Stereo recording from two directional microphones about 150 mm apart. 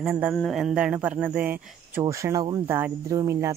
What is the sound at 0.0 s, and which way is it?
Speech, 5° right (ahead or behind).